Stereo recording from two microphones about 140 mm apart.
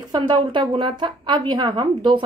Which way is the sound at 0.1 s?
35° right (ahead or behind).